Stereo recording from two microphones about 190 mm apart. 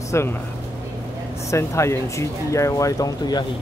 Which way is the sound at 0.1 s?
15° left (ahead or behind).